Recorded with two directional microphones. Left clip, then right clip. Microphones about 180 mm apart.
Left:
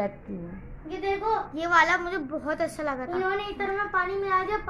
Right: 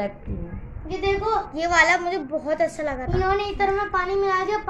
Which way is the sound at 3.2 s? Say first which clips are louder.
Right 9 dB; 40° right (ahead or behind).